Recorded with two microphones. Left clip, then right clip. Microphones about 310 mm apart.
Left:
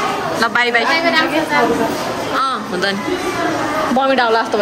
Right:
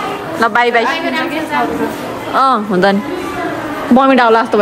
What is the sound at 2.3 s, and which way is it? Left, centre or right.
Speech, centre.